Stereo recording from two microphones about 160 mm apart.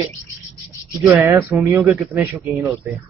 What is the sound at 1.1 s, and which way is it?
Speech, 10° right (ahead or behind).